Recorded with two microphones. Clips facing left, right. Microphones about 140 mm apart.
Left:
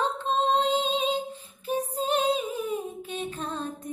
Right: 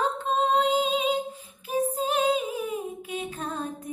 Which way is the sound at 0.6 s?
10° right (ahead or behind).